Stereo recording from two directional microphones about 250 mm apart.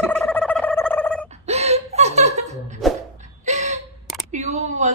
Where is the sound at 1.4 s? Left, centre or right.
Right.